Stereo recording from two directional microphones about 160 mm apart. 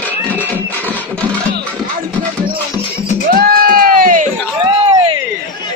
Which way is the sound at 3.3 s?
65° right (ahead or behind).